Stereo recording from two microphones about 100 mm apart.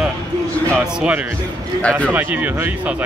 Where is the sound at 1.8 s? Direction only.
10° left (ahead or behind).